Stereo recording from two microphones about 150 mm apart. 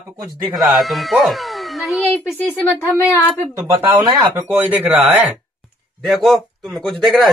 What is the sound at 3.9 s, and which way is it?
Speech, 30° right (ahead or behind).